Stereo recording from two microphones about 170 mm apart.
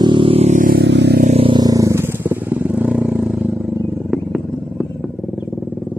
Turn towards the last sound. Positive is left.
turn(degrees=-5)  # may be behind; listen again after turning